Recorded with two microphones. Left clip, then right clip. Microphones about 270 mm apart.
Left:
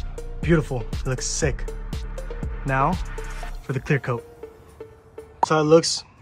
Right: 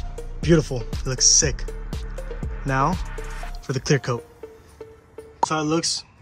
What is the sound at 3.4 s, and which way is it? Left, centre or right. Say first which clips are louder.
Speech: right 3 dB; centre.